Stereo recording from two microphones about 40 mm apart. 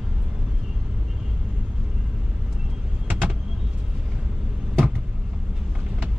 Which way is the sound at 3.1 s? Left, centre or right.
Right.